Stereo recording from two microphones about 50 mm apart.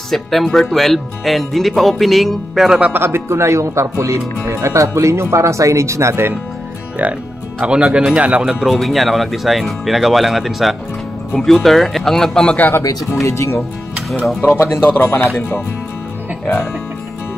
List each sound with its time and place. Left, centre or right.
0.1 s speech: centre
2.9 s speech: right
7.6 s speech: right
8.6 s speech: centre
12.7 s speech: left
14.5 s speech: left
15.1 s speech: left